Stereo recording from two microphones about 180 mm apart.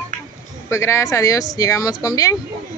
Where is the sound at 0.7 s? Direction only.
15° left (ahead or behind).